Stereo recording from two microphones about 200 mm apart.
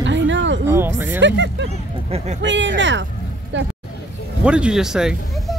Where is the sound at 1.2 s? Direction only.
65° right (ahead or behind).